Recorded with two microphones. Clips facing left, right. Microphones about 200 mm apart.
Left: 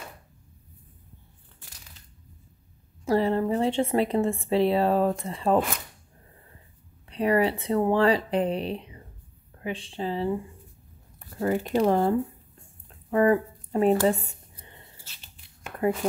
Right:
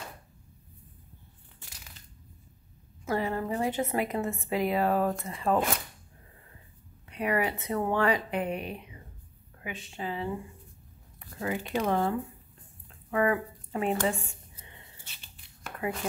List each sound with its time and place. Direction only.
3.1 s a woman's voice: 30° left (ahead or behind)
7.1 s speech: 30° left (ahead or behind)
14.0 s a sound: 35° left (ahead or behind)